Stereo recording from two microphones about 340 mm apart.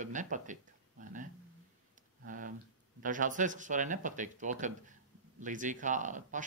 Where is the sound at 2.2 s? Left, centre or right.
Right.